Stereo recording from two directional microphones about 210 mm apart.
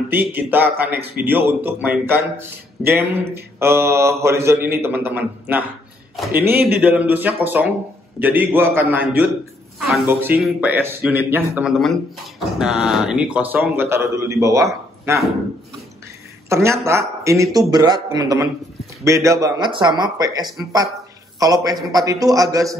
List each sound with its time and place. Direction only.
0.1 s a man's voice: 10° right (ahead or behind)
16.4 s a man's voice: 15° right (ahead or behind)